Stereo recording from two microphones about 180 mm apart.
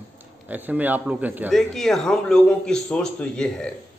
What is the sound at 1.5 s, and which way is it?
Speech, centre (ahead or behind).